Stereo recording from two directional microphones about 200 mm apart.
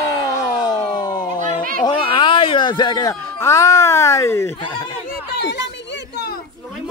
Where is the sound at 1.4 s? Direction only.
45° right (ahead or behind).